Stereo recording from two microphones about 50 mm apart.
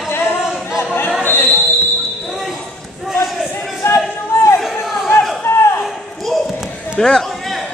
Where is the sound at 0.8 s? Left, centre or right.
Left.